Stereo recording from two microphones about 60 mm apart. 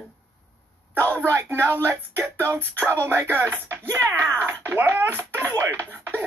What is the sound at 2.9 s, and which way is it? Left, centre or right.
Speech, right.